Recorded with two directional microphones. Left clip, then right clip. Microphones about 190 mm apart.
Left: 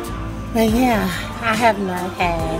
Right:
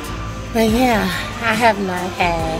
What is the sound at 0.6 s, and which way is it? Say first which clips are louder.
A woman's voice: right 2 dB; 5° left (ahead or behind).